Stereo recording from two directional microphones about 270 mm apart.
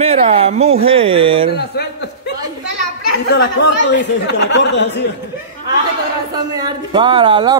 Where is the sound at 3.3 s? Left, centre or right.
Left.